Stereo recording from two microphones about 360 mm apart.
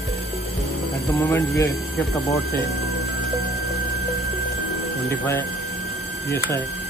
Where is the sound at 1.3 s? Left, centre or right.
Centre.